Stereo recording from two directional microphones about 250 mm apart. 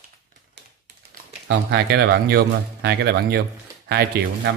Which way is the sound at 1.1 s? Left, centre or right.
Right.